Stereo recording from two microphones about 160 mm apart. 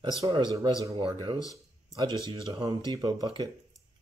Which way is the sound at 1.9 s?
30° right (ahead or behind).